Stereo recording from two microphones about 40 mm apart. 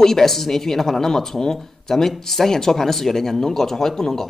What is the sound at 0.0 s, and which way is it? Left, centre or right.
Speech, centre.